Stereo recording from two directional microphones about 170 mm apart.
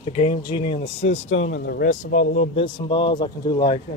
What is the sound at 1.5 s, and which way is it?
Speech, 70° left (ahead or behind).